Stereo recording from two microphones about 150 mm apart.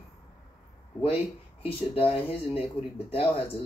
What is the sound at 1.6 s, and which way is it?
Speech, 40° left (ahead or behind).